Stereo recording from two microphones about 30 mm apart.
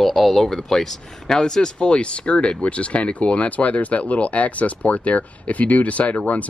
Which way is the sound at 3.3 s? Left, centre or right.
Left.